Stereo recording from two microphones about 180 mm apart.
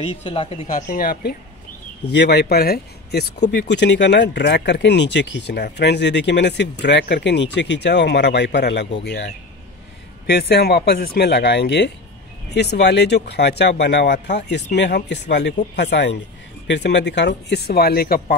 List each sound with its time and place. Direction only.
0.1 s speech: 30° left (ahead or behind)
0.7 s speech: 50° left (ahead or behind)
2.0 s speech: 70° left (ahead or behind)
10.3 s speech: 65° left (ahead or behind)